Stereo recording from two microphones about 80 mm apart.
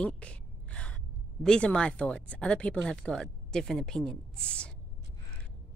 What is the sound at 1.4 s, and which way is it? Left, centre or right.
Speech, centre.